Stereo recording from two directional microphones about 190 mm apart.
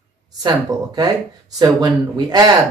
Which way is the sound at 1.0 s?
20° right (ahead or behind).